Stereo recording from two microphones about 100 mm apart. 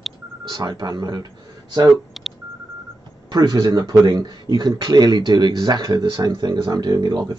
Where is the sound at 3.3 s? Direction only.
40° right (ahead or behind).